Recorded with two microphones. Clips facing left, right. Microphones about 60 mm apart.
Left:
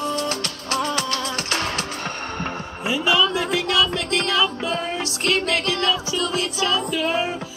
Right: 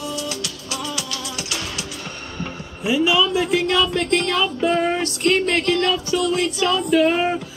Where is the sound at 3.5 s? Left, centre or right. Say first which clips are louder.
Right 2 dB; right.